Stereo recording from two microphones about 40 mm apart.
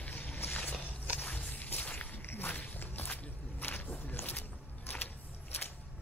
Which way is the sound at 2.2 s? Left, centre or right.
Left.